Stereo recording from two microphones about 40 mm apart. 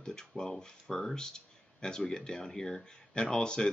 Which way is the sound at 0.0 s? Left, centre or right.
Centre.